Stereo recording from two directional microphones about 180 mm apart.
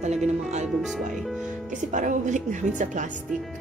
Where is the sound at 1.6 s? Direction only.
45° right (ahead or behind).